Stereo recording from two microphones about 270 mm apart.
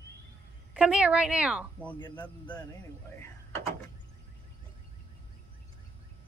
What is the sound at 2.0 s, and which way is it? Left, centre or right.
Speech, centre.